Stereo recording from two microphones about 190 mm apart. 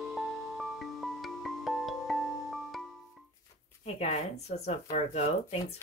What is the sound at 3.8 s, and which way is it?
Speech, 35° left (ahead or behind).